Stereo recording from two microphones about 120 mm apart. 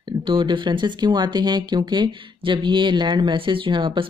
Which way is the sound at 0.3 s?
40° right (ahead or behind).